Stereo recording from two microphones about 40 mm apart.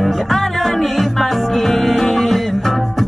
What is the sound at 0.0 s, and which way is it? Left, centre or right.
Music, centre.